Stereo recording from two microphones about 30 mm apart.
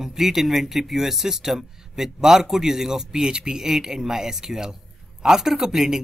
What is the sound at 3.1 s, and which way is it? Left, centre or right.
A man's voice, right.